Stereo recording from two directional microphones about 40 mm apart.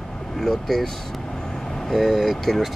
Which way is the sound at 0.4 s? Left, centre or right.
Centre.